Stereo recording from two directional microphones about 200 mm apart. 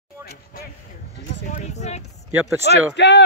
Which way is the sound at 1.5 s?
35° left (ahead or behind).